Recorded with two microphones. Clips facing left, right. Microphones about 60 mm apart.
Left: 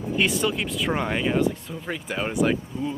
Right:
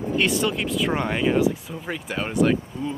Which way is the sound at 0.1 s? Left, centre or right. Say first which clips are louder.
Right 1 dB; centre.